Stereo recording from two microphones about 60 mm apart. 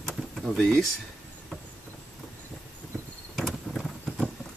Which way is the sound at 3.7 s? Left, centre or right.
Centre.